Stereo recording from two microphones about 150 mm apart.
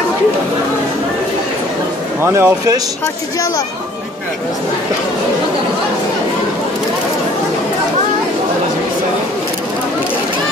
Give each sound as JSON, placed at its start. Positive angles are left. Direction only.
{"t": 2.2, "sound": "speech", "side_deg": -20}